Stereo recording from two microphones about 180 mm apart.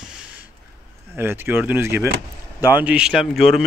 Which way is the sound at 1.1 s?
10° right (ahead or behind).